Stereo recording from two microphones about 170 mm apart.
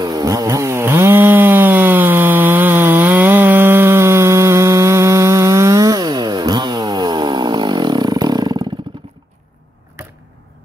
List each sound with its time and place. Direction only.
0.0 s chainsaw: 20° right (ahead or behind)